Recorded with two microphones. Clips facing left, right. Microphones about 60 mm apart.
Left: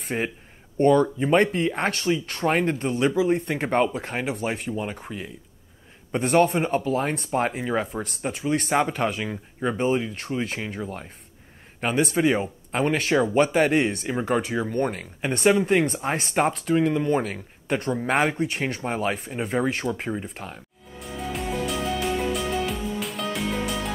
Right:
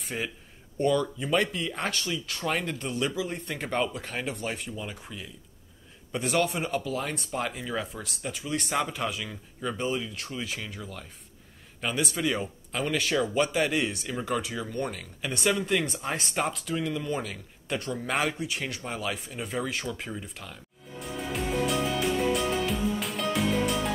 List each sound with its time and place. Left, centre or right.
0.1 s speech: left
3.1 s speech: centre
3.4 s speech: left
4.3 s speech: left
4.6 s speech: left
21.0 s music: centre